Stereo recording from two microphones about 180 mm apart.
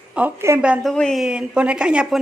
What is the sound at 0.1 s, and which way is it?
A woman's voice, 10° right (ahead or behind).